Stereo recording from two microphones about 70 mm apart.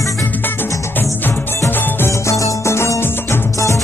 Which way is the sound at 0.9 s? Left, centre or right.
Left.